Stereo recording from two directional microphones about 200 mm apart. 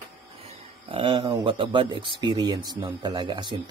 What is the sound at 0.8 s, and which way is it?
Speech, 25° right (ahead or behind).